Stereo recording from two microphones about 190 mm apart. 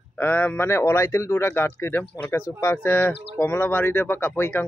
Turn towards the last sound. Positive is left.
turn(degrees=10)  # may be behind; listen again after turning